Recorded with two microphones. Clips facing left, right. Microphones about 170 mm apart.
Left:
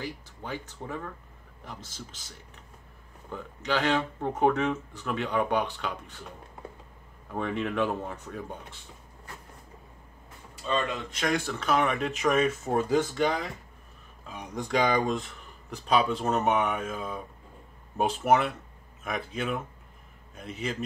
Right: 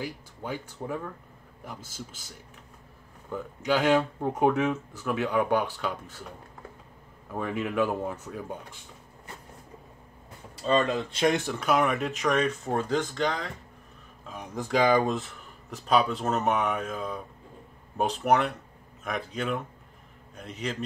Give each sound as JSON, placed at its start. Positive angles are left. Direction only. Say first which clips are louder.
{"t": 0.0, "sound": "speech", "louder": "right 2 dB", "side_deg": -10}
{"t": 7.3, "sound": "speech", "louder": "right 1 dB", "side_deg": -5}
{"t": 10.6, "sound": "speech", "louder": "right 5 dB", "side_deg": -35}
{"t": 11.6, "sound": "speech", "louder": "right 2 dB", "side_deg": -5}